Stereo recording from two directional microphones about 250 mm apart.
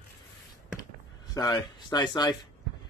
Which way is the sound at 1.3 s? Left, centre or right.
Centre.